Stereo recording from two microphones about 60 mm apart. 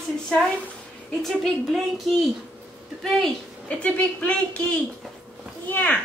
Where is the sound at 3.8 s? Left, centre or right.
Left.